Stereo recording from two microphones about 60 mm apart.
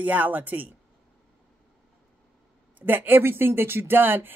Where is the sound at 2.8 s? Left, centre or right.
Right.